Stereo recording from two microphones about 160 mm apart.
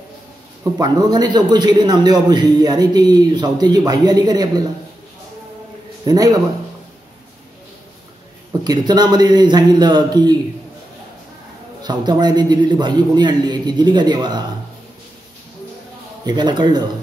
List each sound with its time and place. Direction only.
0.7 s a man's voice: 25° right (ahead or behind)
6.0 s a man's voice: 20° right (ahead or behind)
8.6 s a man's voice: 25° right (ahead or behind)
11.8 s a man's voice: 25° right (ahead or behind)
16.3 s a man's voice: 25° right (ahead or behind)